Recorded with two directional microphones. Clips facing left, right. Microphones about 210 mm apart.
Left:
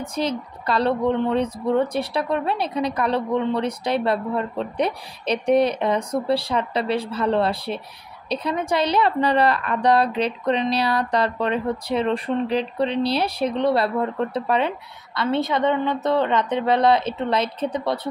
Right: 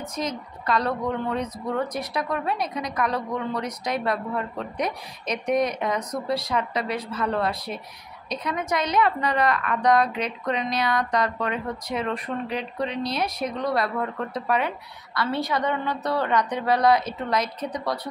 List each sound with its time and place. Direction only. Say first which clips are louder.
0.0 s a woman's voice: left 5 dB; 30° left (ahead or behind)